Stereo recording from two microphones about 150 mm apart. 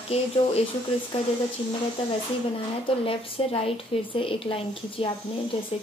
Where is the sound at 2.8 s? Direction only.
40° left (ahead or behind).